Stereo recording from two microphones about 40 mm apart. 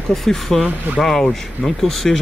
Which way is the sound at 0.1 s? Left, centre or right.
Centre.